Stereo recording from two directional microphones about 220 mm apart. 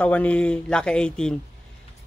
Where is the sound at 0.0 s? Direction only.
5° left (ahead or behind).